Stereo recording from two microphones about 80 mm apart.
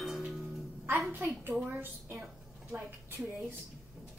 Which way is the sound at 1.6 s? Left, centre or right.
Right.